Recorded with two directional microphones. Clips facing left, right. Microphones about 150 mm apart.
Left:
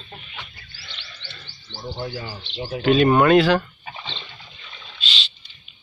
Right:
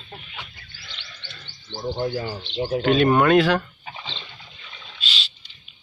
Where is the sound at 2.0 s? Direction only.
50° right (ahead or behind).